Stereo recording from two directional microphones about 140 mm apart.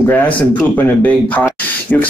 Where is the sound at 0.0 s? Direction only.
15° left (ahead or behind).